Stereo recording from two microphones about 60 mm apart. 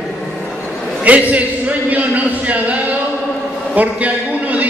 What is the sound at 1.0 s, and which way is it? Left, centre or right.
A man's voice, right.